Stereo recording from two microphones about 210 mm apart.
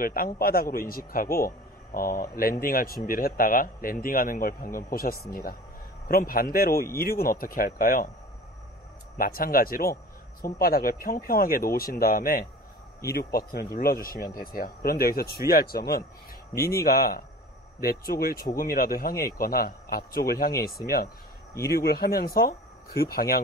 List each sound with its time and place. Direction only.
0.0 s speech: 45° left (ahead or behind)
9.2 s speech: 45° left (ahead or behind)